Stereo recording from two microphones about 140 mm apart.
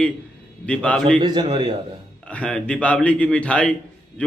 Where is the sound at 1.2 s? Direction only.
30° right (ahead or behind).